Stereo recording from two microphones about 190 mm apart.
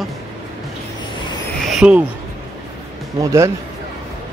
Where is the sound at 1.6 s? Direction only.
5° right (ahead or behind).